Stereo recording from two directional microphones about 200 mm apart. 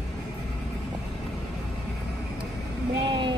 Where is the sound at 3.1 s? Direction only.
25° right (ahead or behind).